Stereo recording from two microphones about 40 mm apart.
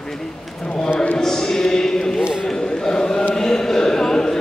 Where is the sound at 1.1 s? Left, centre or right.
Centre.